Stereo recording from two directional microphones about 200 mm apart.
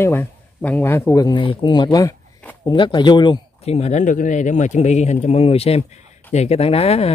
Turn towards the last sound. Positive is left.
turn(degrees=30)  # may be behind; listen again after turning